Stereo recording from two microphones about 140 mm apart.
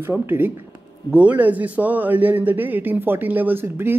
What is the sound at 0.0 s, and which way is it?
A man's voice, 15° right (ahead or behind).